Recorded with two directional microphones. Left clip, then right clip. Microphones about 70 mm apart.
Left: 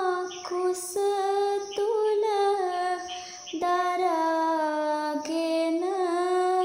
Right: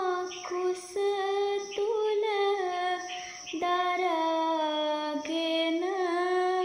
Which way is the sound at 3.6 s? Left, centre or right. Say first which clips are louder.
Left 3 dB; left.